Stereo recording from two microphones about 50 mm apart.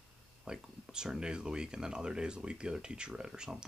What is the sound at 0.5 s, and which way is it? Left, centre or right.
Speech, centre.